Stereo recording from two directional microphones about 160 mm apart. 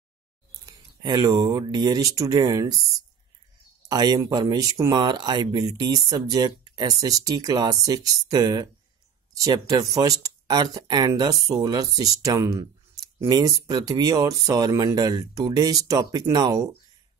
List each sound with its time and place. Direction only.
0.7 s speech: 25° right (ahead or behind)
3.9 s speech: 25° right (ahead or behind)